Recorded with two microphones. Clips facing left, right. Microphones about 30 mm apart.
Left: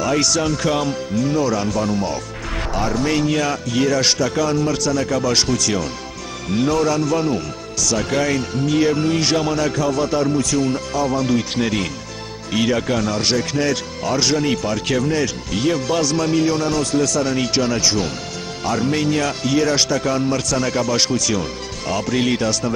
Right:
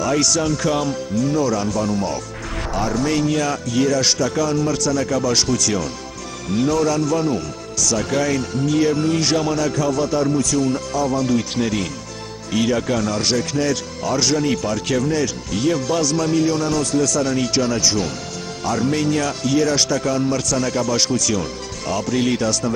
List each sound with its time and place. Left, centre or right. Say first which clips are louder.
0.0 s speech: even; centre